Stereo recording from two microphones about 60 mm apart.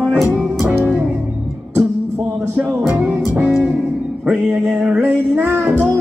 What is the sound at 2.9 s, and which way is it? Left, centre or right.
Music, right.